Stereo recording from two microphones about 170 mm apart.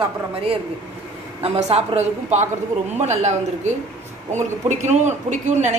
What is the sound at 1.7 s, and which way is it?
A woman's voice, 40° right (ahead or behind).